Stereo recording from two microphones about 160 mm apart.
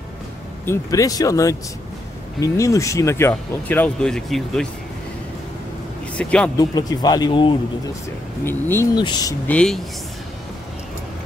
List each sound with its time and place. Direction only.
0.7 s speech: 20° left (ahead or behind); by 4.6 s 5° left (ahead or behind)
6.1 s speech: 5° left (ahead or behind)
6.6 s speech: 25° left (ahead or behind)
8.5 s speech: 15° left (ahead or behind)
8.9 s speech: 25° left (ahead or behind)
9.5 s speech: 5° left (ahead or behind)